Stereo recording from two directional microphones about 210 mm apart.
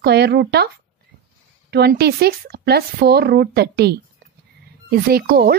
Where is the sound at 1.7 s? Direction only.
50° right (ahead or behind).